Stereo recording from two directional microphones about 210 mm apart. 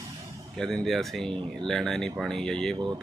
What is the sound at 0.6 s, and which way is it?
Speech, centre (ahead or behind).